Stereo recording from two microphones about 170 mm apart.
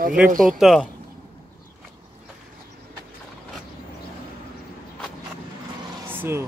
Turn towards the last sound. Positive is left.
turn(degrees=-15)  # may be behind; listen again after turning